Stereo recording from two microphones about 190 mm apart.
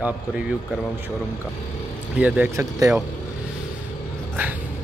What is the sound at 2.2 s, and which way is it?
Speech, 10° right (ahead or behind).